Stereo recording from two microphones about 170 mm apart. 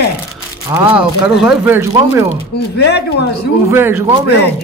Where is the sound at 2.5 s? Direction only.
75° left (ahead or behind).